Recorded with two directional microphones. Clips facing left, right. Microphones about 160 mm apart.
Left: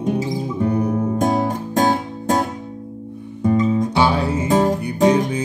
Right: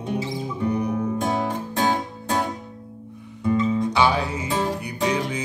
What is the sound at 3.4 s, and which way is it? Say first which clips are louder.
Music: left 4 dB; 45° left (ahead or behind).